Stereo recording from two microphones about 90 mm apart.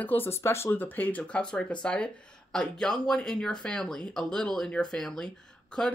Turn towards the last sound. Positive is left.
turn(degrees=5)  # may be behind; listen again after turning